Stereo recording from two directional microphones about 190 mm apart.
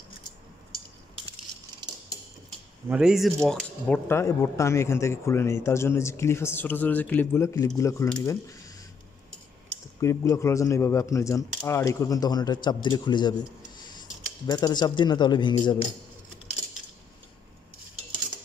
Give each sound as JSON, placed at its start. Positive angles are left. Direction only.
{"t": 2.9, "sound": "speech", "side_deg": -5}
{"t": 9.9, "sound": "speech", "side_deg": 15}